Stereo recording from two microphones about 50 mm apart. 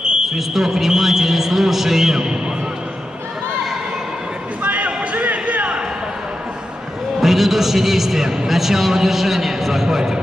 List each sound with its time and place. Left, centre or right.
0.0 s a man's voice: centre
4.6 s a sound: right
7.2 s a man's voice: centre